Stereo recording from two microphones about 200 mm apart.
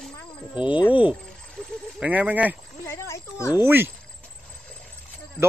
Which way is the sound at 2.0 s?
5° right (ahead or behind).